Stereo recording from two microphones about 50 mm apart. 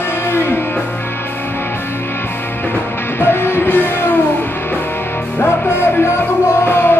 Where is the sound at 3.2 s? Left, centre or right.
Left.